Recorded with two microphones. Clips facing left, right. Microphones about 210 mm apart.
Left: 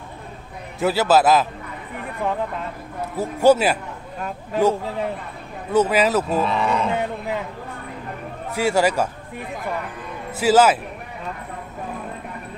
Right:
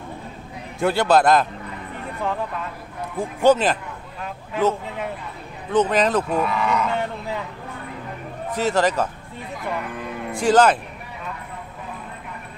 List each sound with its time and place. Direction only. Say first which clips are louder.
0.7 s a man's voice: even; 5° left (ahead or behind)
3.2 s speech: left 1 dB; 10° left (ahead or behind)
4.6 s speech: left 2 dB; 40° left (ahead or behind)
5.7 s speech: left 1 dB; 10° left (ahead or behind)
6.4 s speech: left 1 dB; 30° left (ahead or behind)
8.5 s speech: left 1 dB; 10° left (ahead or behind)
10.3 s speech: left 1 dB; 5° left (ahead or behind)